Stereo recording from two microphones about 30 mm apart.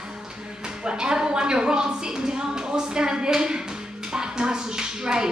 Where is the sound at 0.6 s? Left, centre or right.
Right.